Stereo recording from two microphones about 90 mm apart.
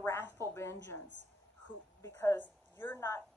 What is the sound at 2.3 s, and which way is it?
Speech, 20° left (ahead or behind).